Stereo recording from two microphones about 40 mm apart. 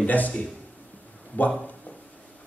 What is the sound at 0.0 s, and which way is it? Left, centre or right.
Speech, left.